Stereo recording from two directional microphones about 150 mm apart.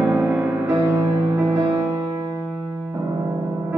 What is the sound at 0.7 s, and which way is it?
Music, 20° right (ahead or behind).